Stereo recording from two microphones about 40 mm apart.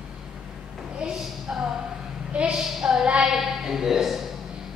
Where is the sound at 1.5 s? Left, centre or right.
Right.